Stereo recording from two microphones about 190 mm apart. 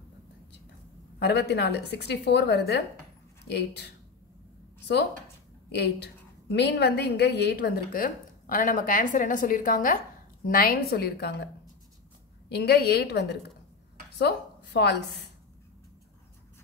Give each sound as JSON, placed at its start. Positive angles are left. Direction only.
{"t": 1.2, "sound": "a woman's voice", "side_deg": 60}
{"t": 5.8, "sound": "a woman's voice", "side_deg": 60}
{"t": 12.4, "sound": "a woman's voice", "side_deg": 60}
{"t": 14.1, "sound": "a sound", "side_deg": 60}